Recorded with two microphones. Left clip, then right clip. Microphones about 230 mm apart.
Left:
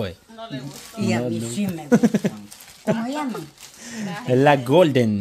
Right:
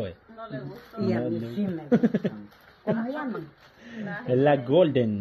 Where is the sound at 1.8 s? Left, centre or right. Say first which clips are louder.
Left 6 dB; left.